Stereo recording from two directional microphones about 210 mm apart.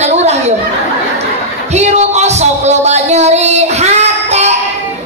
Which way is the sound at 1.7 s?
30° right (ahead or behind).